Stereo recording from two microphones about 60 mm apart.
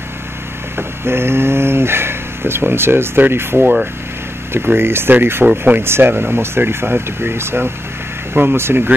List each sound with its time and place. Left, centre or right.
0.7 s speech: right